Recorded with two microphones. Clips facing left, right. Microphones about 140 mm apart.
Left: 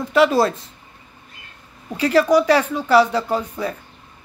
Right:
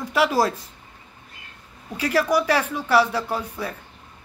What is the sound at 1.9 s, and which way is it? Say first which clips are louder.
A woman's voice: left 6 dB; 5° right (ahead or behind).